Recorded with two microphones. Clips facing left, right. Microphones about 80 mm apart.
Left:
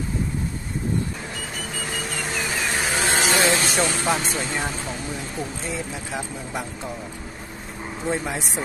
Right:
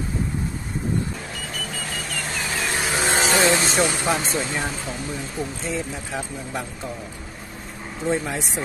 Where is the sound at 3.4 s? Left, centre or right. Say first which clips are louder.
Right 3 dB; right.